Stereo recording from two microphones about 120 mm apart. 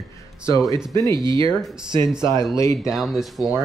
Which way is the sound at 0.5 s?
25° left (ahead or behind).